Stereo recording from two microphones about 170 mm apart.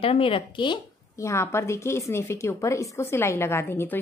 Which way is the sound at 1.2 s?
15° left (ahead or behind).